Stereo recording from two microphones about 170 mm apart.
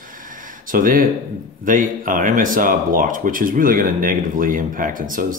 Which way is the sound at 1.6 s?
50° right (ahead or behind).